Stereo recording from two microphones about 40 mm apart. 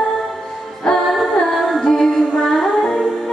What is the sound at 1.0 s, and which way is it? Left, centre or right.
Music, centre.